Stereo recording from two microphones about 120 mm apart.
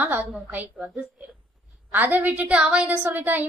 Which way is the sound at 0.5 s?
15° right (ahead or behind).